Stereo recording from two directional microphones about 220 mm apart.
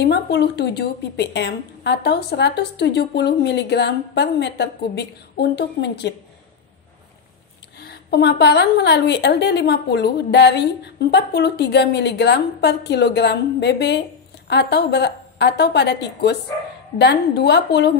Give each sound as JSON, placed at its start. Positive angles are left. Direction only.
{"t": 0.0, "sound": "a woman's voice", "side_deg": 50}
{"t": 7.8, "sound": "a woman's voice", "side_deg": 45}